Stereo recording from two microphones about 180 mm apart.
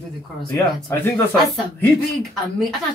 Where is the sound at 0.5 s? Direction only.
10° left (ahead or behind).